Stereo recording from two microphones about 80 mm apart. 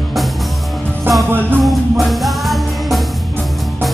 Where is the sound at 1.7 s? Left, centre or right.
Centre.